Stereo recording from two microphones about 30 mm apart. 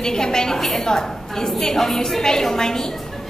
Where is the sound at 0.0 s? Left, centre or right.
Left.